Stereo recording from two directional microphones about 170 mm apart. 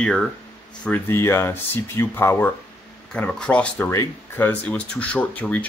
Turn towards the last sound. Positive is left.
turn(degrees=10)  # may be behind; listen again after turning